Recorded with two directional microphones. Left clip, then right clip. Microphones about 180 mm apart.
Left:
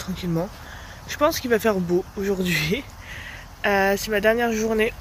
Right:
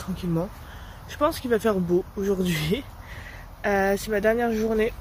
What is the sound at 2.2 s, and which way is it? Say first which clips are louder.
Speech: left 3 dB; 10° right (ahead or behind).